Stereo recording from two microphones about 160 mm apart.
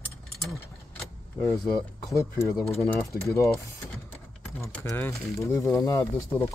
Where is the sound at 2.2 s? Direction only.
20° left (ahead or behind).